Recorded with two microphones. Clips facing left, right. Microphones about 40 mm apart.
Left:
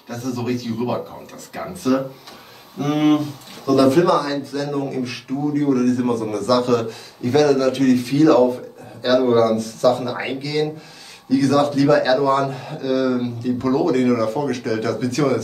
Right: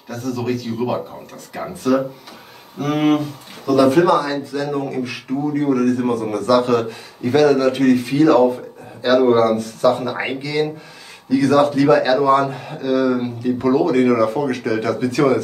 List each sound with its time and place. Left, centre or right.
0.1 s speech: centre